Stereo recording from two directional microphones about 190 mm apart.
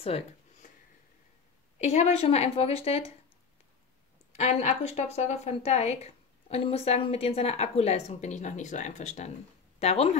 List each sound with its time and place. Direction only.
0.0 s a sound: 30° left (ahead or behind)
1.8 s a woman's voice: 35° left (ahead or behind)
4.3 s a woman's voice: 35° left (ahead or behind)